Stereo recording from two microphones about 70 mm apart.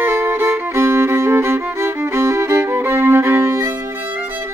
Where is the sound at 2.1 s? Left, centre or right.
Right.